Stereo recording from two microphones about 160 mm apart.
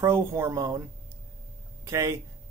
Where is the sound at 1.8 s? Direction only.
20° right (ahead or behind).